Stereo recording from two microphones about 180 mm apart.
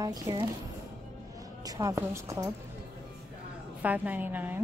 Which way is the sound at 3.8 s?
10° right (ahead or behind).